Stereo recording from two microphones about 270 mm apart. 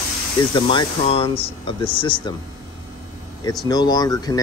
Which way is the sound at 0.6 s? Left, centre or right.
Centre.